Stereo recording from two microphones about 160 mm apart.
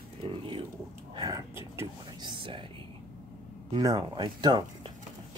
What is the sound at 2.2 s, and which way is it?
Speech, 30° right (ahead or behind).